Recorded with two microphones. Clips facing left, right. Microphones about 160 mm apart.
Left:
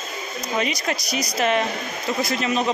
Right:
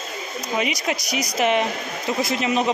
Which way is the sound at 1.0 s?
15° right (ahead or behind).